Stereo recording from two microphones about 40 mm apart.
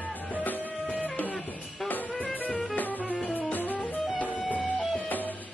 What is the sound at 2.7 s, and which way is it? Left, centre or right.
Music, left.